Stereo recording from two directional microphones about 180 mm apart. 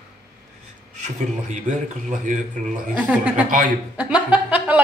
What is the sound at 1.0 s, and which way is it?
Speech, 40° right (ahead or behind).